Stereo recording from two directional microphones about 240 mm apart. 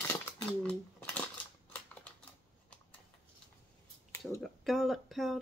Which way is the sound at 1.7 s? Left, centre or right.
Centre.